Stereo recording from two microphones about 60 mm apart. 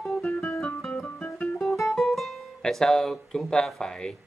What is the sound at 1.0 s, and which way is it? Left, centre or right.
Guitar, centre.